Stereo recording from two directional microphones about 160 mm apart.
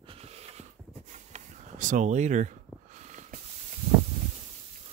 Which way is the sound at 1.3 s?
50° right (ahead or behind).